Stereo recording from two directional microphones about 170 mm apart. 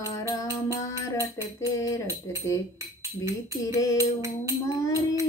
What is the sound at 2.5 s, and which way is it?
Speech, 15° left (ahead or behind).